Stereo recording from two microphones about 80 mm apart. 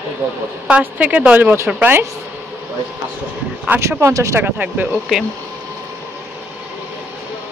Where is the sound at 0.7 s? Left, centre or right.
Centre.